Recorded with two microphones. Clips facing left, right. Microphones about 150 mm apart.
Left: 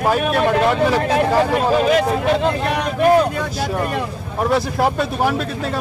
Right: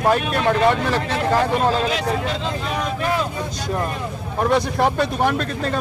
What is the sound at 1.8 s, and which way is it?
Speech, 55° left (ahead or behind).